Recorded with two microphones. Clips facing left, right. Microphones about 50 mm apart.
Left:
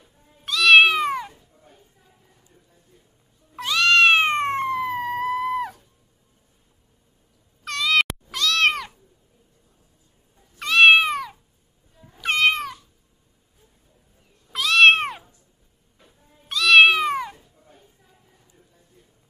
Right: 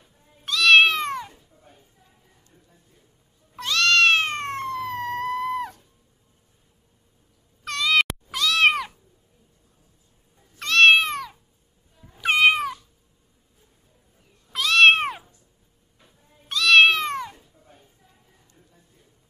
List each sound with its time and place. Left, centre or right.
0.0 s cat: centre
3.5 s cat: centre
4.6 s music: centre
7.6 s cat: centre
10.6 s cat: centre
12.1 s cat: centre
14.5 s cat: centre